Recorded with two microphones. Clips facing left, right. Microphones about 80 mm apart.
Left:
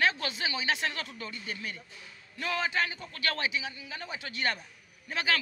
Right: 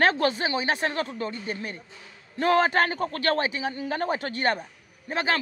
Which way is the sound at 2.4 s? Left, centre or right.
Right.